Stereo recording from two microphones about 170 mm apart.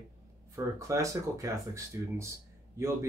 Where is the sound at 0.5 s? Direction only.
20° right (ahead or behind).